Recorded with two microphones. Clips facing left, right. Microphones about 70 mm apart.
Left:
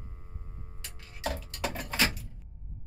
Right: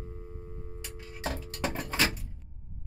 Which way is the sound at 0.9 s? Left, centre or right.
Right.